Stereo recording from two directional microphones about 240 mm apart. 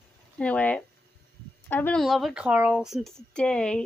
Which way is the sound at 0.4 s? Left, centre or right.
Centre.